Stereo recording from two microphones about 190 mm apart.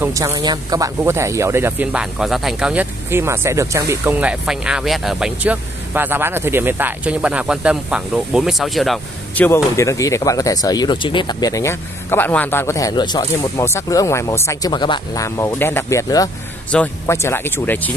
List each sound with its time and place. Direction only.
0.0 s speech: 15° right (ahead or behind); by 17.9 s 10° left (ahead or behind)